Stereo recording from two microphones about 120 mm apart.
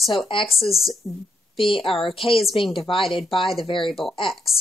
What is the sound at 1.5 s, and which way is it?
Speech, 50° left (ahead or behind).